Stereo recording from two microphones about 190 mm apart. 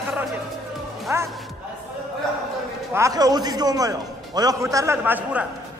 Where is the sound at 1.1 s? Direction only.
15° right (ahead or behind).